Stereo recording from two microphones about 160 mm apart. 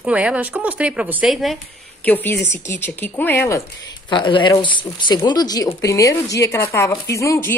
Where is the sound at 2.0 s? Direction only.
10° left (ahead or behind).